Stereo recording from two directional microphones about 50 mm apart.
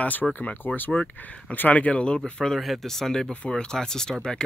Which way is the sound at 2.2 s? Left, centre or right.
Centre.